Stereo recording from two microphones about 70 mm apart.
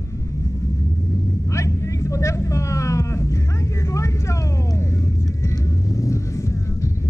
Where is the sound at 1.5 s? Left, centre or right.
Left.